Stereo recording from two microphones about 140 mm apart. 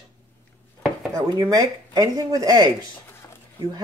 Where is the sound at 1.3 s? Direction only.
30° right (ahead or behind).